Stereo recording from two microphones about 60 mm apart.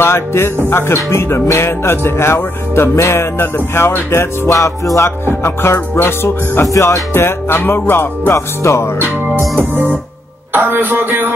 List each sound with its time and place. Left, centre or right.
0.0 s speech: left
4.5 s music: left
5.3 s speech: left
6.6 s music: left
7.2 s music: left
8.3 s speech: left
9.6 s speech: right